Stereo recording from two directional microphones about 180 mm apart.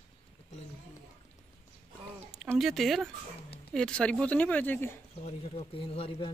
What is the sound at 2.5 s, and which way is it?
Speech, centre (ahead or behind).